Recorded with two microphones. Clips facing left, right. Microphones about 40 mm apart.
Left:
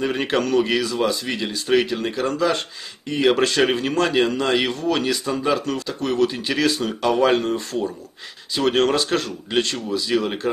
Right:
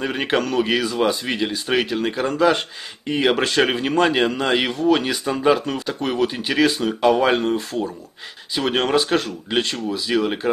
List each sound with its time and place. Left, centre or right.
0.0 s speech: centre